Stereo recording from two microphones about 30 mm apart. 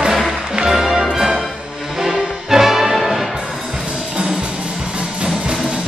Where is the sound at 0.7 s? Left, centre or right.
Centre.